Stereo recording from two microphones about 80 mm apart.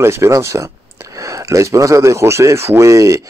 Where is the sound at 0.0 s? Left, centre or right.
Right.